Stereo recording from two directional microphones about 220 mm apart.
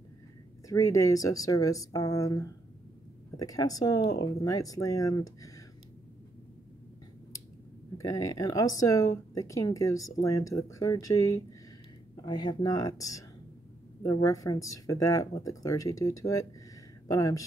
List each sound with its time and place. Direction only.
0.7 s speech: 15° left (ahead or behind)
8.0 s speech: 15° left (ahead or behind)